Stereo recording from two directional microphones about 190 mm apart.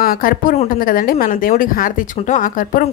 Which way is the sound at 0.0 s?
50° left (ahead or behind).